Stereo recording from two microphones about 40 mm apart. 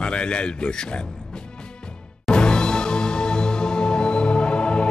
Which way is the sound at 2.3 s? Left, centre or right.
Left.